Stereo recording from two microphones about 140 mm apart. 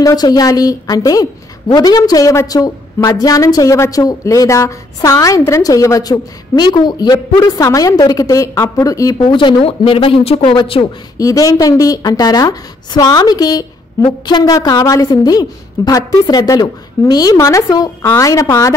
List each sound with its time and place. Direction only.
0.0 s a woman's voice: 30° left (ahead or behind)
11.1 s a woman's voice: 25° left (ahead or behind)